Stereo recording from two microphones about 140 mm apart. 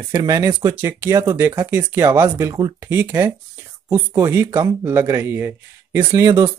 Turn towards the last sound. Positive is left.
turn(degrees=-25)  # may be behind; listen again after turning